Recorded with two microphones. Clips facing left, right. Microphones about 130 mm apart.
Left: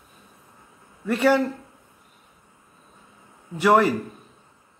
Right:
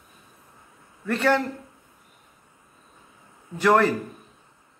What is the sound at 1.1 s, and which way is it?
Speech, 10° left (ahead or behind).